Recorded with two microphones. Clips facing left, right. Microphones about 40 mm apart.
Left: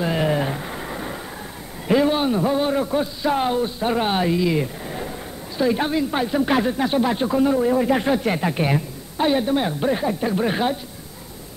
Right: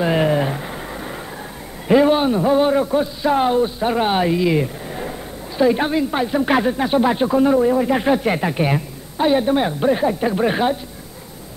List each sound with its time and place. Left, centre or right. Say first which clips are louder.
0.0 s speech: right 4 dB; centre
0.3 s a sound: right 3 dB; centre
1.9 s a man's voice: right 4 dB; centre